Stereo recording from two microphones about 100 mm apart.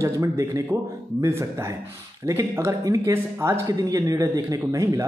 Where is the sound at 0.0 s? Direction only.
30° right (ahead or behind).